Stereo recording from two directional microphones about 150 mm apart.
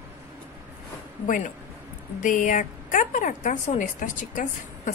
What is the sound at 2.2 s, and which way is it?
Speech, 60° left (ahead or behind).